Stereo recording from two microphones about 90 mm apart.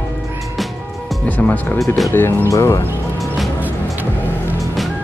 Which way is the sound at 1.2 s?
20° left (ahead or behind).